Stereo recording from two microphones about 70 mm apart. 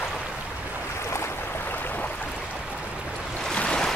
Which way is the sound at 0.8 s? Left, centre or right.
Left.